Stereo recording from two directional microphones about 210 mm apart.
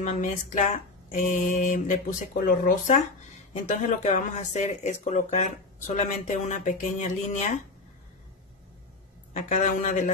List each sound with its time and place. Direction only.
0.0 s speech: 35° left (ahead or behind)
9.3 s speech: 35° left (ahead or behind)